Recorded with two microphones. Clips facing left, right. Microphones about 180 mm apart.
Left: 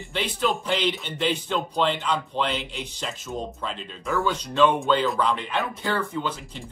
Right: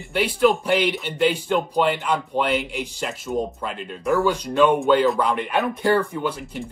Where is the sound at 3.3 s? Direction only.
20° right (ahead or behind).